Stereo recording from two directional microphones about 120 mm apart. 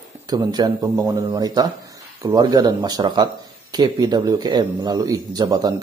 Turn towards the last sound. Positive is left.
turn(degrees=-35)  # may be behind; listen again after turning